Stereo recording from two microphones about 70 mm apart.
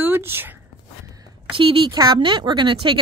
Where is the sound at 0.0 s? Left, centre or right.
Right.